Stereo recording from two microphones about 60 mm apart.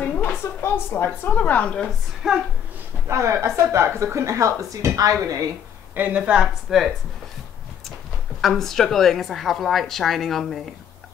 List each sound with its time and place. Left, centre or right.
0.2 s a woman's voice: left; by 1.9 s centre
2.2 s a woman's voice: centre
3.1 s speech: right
5.9 s speech: right
8.4 s a woman's voice: centre